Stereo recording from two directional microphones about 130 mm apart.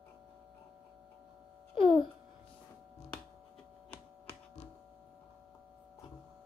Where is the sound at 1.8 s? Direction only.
40° left (ahead or behind).